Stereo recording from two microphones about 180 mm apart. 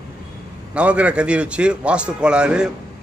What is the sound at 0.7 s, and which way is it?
A man's voice, 5° right (ahead or behind).